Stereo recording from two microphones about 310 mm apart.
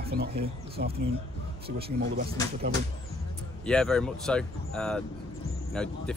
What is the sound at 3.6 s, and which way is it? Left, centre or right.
Speech, centre.